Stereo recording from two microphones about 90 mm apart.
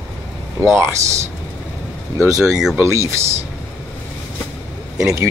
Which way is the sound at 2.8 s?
30° right (ahead or behind).